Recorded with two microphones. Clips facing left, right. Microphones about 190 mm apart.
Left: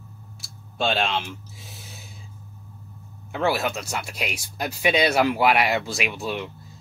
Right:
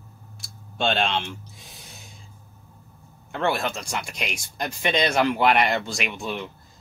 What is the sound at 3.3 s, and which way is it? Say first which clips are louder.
Speech: left 1 dB; 5° left (ahead or behind).